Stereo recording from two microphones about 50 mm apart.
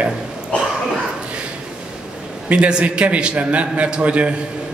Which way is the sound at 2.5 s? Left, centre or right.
Right.